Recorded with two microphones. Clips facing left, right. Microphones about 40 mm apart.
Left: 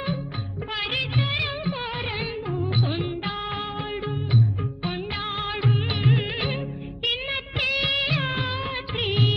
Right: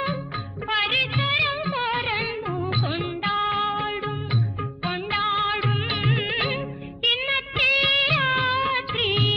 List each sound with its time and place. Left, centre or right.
0.7 s music of bollywood: right
5.1 s music: right